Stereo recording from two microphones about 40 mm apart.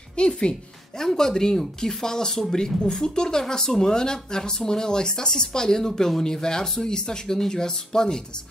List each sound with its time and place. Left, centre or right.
0.1 s a woman's voice: left